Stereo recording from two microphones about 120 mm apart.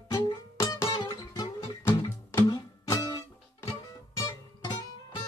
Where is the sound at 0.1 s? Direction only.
30° left (ahead or behind).